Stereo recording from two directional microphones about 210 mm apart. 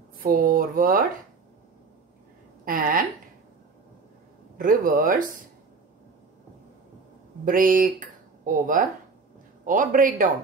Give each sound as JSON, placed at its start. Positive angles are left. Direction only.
{"t": 0.2, "sound": "speech", "side_deg": -45}
{"t": 2.6, "sound": "a woman's voice", "side_deg": -40}
{"t": 4.6, "sound": "speech", "side_deg": -40}
{"t": 7.4, "sound": "speech", "side_deg": -40}